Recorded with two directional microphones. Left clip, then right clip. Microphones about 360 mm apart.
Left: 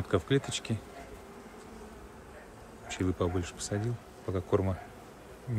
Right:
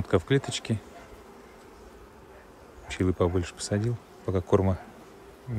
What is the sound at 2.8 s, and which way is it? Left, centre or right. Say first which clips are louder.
Speech: right 6 dB; right.